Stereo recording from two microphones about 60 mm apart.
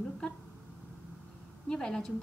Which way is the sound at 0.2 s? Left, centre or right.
Centre.